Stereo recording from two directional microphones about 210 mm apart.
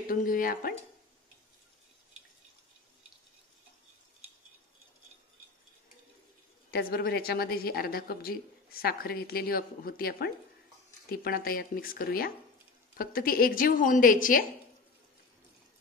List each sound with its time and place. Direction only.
0.1 s speech: 40° left (ahead or behind)
6.7 s a woman's voice: 45° left (ahead or behind)